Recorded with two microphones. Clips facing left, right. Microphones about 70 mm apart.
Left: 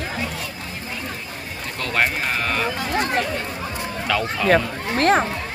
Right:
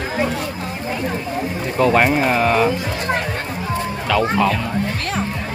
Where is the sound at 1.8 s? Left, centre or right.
Centre.